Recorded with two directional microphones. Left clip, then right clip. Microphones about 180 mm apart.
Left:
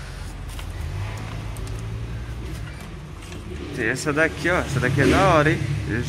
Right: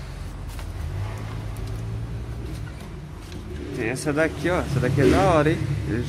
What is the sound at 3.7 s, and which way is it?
Speech, 5° right (ahead or behind).